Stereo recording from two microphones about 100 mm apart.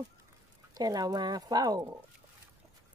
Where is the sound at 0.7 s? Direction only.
40° right (ahead or behind).